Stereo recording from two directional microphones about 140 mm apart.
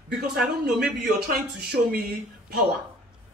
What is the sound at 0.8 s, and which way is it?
Speech, 90° right.